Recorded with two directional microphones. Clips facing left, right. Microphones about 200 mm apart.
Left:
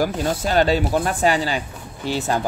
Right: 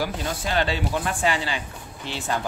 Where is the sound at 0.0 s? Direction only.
40° left (ahead or behind).